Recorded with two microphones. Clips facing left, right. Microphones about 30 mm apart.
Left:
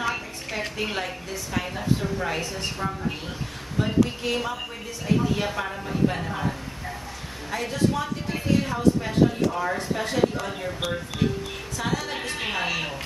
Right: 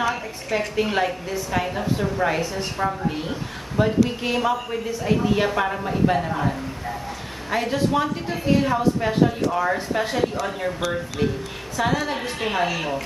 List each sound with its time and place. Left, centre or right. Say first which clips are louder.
0.1 s a woman's voice: right 5 dB; centre
2.4 s a woman's voice: right 3 dB; centre
2.8 s a woman's voice: right 8 dB; centre
6.1 s a woman's voice: right 6 dB; centre
7.5 s a woman's voice: right 4 dB; right; by 13.0 s centre